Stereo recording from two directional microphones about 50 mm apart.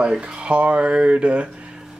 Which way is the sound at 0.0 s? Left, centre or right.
Centre.